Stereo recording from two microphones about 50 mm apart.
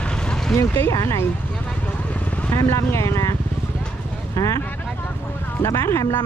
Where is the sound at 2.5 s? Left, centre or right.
Left.